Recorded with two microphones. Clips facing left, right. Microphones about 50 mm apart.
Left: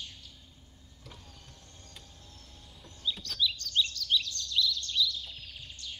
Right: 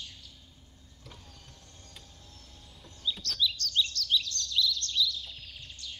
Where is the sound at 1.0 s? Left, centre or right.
Centre.